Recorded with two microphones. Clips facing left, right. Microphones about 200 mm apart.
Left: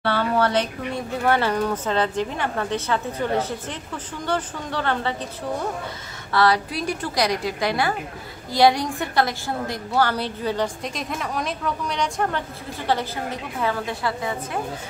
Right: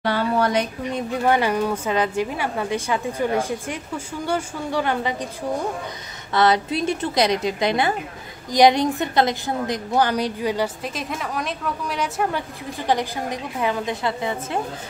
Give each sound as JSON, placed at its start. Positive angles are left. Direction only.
{"t": 0.0, "sound": "a woman's voice", "side_deg": -15}
{"t": 6.3, "sound": "a woman's voice", "side_deg": -20}